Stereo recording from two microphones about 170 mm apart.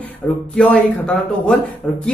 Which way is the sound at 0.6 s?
5° left (ahead or behind).